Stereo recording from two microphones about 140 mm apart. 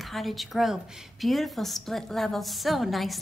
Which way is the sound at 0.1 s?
Centre (ahead or behind).